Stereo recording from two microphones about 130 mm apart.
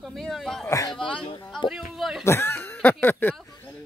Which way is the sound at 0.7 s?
25° left (ahead or behind).